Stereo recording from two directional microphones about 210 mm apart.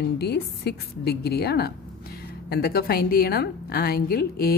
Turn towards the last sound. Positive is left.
turn(degrees=45)  # may be behind; listen again after turning